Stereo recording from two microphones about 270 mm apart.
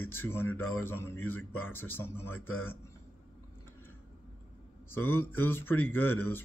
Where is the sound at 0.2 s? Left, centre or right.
Centre.